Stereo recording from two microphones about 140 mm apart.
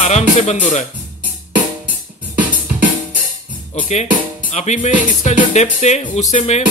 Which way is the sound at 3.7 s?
55° left (ahead or behind).